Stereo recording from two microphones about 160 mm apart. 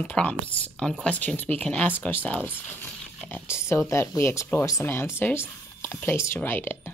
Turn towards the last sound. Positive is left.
turn(degrees=15)  # may be behind; listen again after turning